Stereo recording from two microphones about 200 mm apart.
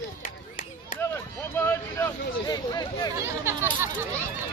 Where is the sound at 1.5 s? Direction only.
10° left (ahead or behind).